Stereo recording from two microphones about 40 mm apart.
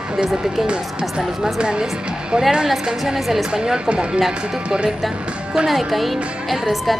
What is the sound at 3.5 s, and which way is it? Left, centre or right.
A woman's voice, centre.